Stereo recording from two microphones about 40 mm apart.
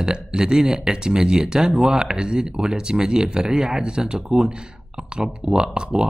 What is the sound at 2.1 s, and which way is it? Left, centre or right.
Speech, right.